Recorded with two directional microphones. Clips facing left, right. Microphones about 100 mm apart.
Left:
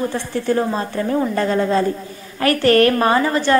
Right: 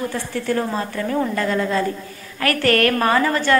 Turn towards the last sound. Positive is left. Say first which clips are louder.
# left 2 dB
turn(degrees=25)  # may be behind; listen again after turning